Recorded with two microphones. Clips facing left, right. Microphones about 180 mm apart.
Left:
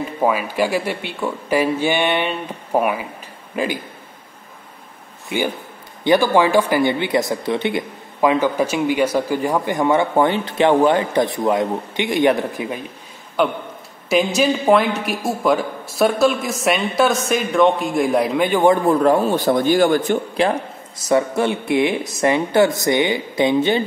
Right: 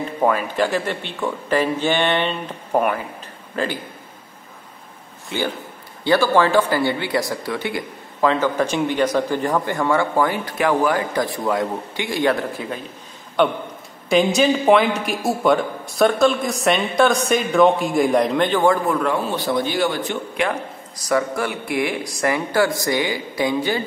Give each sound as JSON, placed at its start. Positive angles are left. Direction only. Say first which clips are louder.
{"t": 0.2, "sound": "speech", "louder": "even", "side_deg": 10}
{"t": 5.3, "sound": "speech", "louder": "left 2 dB", "side_deg": 15}
{"t": 13.4, "sound": "speech", "louder": "right 1 dB", "side_deg": 0}
{"t": 18.9, "sound": "a man's voice", "louder": "left 6 dB", "side_deg": 35}
{"t": 20.4, "sound": "a man's voice", "louder": "left 4 dB", "side_deg": 30}